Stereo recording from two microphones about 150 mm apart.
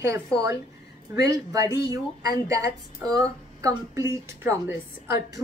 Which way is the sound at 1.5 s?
20° right (ahead or behind).